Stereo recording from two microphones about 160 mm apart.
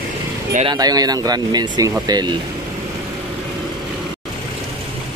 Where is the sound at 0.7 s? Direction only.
25° right (ahead or behind).